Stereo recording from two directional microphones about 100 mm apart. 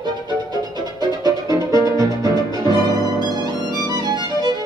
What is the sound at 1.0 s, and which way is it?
Music, 40° right (ahead or behind).